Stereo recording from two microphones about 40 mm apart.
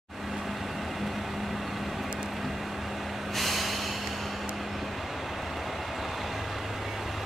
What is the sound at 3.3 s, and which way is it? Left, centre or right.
Vehicle, centre.